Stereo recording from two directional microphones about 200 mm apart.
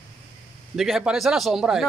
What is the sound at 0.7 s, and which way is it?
Speech, centre (ahead or behind).